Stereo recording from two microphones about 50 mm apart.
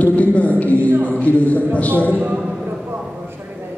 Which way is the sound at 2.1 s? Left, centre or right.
Right.